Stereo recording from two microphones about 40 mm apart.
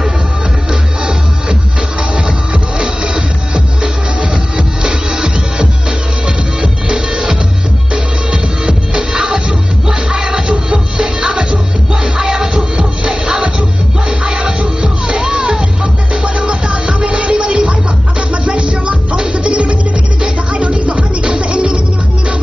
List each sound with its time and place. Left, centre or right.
0.7 s music: centre
2.8 s music: right